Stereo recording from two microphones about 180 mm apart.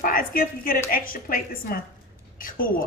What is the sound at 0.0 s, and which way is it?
Speech, 50° left (ahead or behind).